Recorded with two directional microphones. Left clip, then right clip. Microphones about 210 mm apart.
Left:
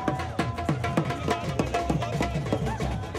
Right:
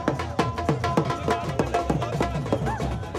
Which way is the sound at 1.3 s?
Centre (ahead or behind).